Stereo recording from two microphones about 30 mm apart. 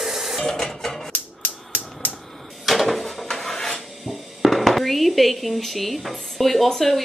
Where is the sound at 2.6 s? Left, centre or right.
Centre.